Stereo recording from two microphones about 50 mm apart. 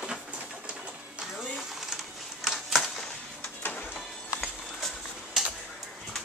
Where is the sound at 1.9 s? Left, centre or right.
Centre.